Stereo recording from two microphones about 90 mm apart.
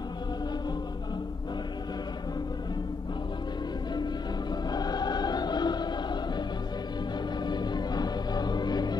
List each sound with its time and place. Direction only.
4.6 s choir: 50° left (ahead or behind)
7.4 s music: 55° left (ahead or behind)